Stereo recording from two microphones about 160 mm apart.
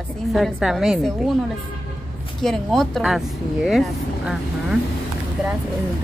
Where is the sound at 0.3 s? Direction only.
Centre (ahead or behind).